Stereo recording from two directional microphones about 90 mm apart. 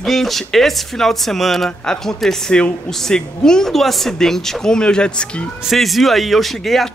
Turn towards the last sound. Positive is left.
turn(degrees=0)  # may be behind; listen again after turning